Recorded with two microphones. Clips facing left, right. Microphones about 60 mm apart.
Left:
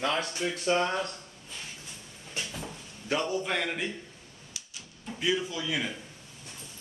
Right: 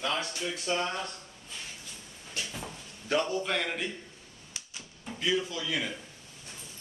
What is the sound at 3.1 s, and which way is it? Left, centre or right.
Speech, centre.